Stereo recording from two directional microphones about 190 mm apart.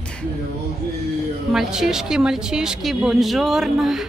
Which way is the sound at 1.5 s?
Centre (ahead or behind).